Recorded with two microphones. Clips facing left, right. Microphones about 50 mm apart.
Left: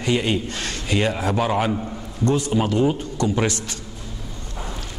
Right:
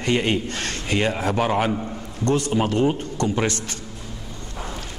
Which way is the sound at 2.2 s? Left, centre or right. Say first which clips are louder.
Left 1 dB; right.